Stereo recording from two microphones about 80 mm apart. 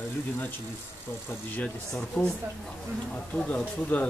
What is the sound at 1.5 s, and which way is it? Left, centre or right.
Speech, centre.